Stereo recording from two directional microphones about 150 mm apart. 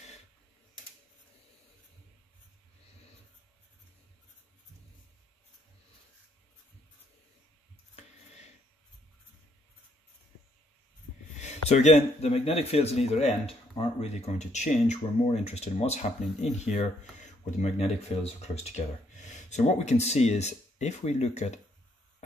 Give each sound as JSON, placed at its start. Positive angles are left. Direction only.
{"t": 11.3, "sound": "speech", "side_deg": 50}